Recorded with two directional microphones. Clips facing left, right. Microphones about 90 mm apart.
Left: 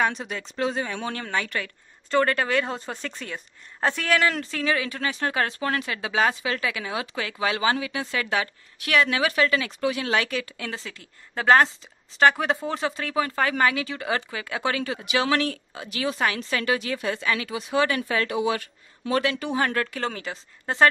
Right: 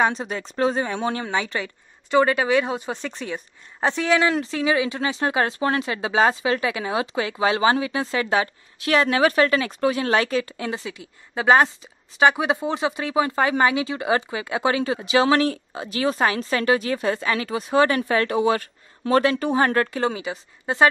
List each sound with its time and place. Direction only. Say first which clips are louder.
0.0 s speech: right 4 dB; 35° right (ahead or behind)
1.2 s a woman's voice: right 3 dB; 20° right (ahead or behind)
10.7 s a woman's voice: right 6 dB; 10° right (ahead or behind); by 20.0 s 35° right (ahead or behind)
20.0 s a woman's voice: right 6 dB; 10° right (ahead or behind)